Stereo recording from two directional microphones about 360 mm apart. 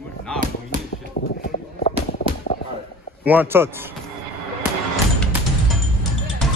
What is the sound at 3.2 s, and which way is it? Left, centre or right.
Speech, centre.